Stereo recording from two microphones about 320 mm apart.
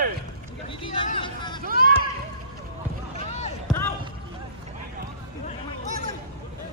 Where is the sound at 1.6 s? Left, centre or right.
Right.